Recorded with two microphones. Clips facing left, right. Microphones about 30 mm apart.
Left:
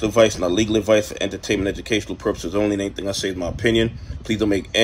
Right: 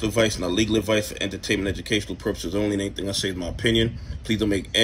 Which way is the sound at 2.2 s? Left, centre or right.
Centre.